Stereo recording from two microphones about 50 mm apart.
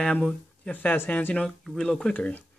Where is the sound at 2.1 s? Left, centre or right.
Left.